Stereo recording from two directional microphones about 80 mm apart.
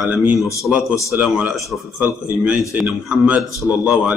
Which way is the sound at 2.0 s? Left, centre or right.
Right.